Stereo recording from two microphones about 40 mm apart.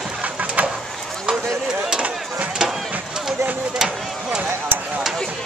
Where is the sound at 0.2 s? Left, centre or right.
Right.